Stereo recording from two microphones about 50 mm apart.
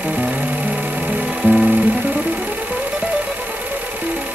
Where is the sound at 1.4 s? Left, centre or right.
Right.